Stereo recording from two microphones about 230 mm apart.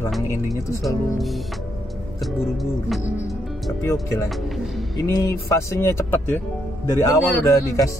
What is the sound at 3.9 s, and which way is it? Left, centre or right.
A man's voice, centre.